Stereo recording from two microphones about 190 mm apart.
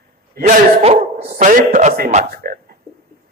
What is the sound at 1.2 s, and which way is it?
Speech, 50° right (ahead or behind).